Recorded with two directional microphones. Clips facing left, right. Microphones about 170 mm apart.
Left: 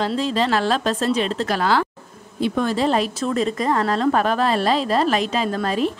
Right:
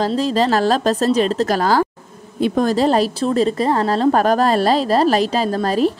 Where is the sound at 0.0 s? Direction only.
40° right (ahead or behind).